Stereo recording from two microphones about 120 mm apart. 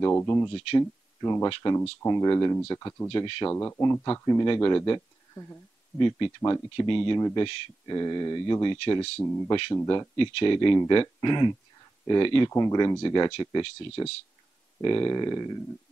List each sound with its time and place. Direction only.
0.1 s speech: 20° left (ahead or behind)
3.1 s speech: 45° left (ahead or behind)
3.5 s speech: 20° left (ahead or behind)
3.8 s speech: 35° left (ahead or behind)
5.9 s speech: 40° left (ahead or behind)
8.7 s speech: 50° left (ahead or behind)
9.5 s speech: 40° left (ahead or behind)
12.4 s speech: 30° left (ahead or behind)